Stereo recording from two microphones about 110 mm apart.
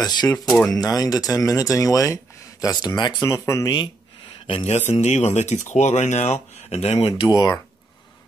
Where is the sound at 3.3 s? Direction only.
30° left (ahead or behind).